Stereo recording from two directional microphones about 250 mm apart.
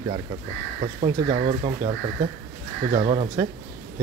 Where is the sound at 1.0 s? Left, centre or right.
Right.